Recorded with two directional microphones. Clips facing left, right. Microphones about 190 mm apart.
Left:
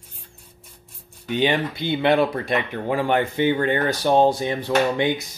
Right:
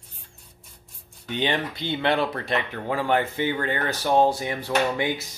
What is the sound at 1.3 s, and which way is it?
Speech, 10° left (ahead or behind).